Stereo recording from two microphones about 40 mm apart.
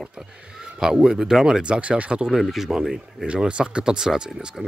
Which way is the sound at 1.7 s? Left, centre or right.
Right.